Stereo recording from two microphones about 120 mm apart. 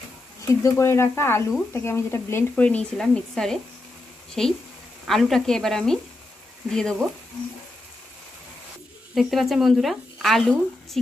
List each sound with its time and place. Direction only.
0.6 s speech: 25° left (ahead or behind); by 7.1 s 5° left (ahead or behind)
9.1 s speech: centre (ahead or behind)